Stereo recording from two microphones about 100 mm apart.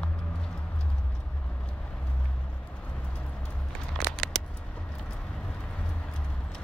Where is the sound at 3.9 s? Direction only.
5° left (ahead or behind).